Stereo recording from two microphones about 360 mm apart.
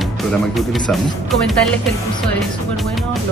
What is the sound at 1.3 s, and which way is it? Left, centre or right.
Speech, centre.